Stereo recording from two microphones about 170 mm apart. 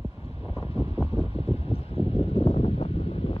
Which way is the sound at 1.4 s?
35° left (ahead or behind).